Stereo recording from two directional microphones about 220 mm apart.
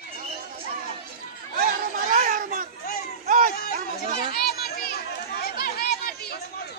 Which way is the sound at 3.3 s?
40° right (ahead or behind).